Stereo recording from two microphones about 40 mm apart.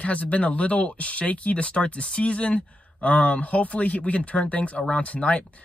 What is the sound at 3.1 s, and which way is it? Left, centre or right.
Speech, left.